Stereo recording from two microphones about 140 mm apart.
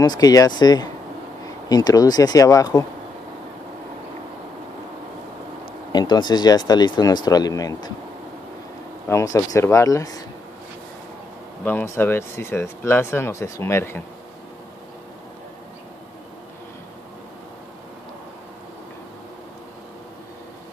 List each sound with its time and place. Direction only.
0.0 s speech: 25° left (ahead or behind)
5.9 s speech: 30° left (ahead or behind)
9.1 s speech: 25° left (ahead or behind)
11.6 s speech: 15° left (ahead or behind)